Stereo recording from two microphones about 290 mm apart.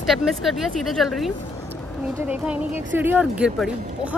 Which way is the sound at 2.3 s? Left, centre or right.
Centre.